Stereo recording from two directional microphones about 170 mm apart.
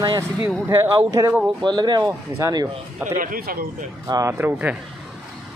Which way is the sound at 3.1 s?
55° right (ahead or behind).